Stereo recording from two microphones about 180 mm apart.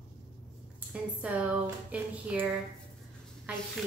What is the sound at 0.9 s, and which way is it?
A woman's voice, 5° right (ahead or behind).